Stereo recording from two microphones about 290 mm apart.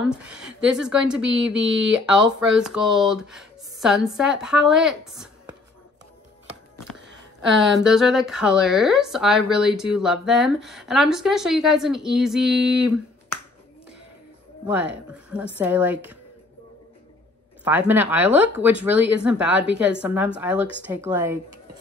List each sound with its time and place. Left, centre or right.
0.0 s a woman's voice: centre
7.1 s a sound: right
7.8 s a woman's voice: centre
14.7 s a woman's voice: centre
17.6 s a woman's voice: centre